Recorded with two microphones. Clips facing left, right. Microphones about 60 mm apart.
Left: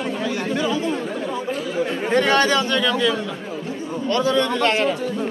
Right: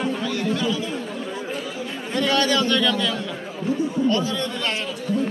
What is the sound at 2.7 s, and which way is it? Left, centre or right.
Speech, centre.